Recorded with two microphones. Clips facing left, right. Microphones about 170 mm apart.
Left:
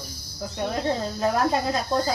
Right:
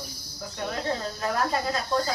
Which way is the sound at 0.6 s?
20° left (ahead or behind).